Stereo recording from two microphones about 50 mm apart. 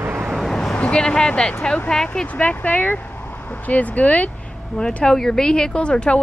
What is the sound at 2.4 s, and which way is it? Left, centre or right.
Speech, left.